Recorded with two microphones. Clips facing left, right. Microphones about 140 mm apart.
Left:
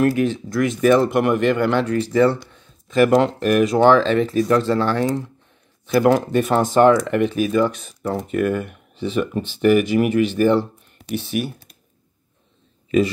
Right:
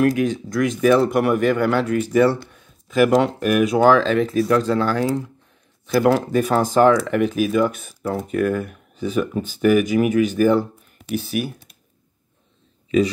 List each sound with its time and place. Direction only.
0.0 s speech: centre (ahead or behind)